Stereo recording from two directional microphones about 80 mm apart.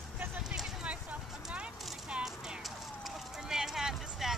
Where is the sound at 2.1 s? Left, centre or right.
Centre.